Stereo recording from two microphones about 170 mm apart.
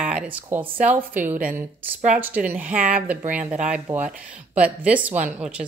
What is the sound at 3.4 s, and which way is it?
Speech, 45° right (ahead or behind).